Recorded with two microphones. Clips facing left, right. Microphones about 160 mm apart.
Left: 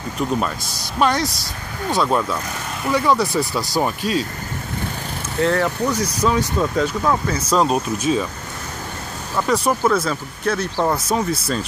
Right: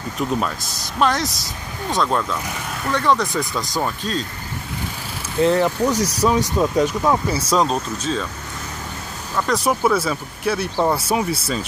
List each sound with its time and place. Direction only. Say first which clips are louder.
0.2 s speech: left 1 dB; centre (ahead or behind)
5.4 s speech: right 2 dB; 15° right (ahead or behind)
7.4 s speech: left 4 dB; 5° left (ahead or behind)
9.4 s speech: left 1 dB; centre (ahead or behind)